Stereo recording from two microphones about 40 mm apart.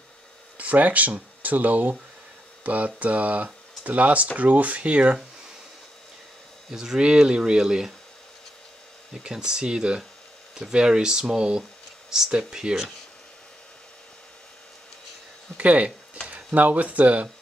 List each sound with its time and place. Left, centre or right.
0.6 s speech: right
6.7 s speech: centre
9.2 s speech: centre
15.5 s speech: right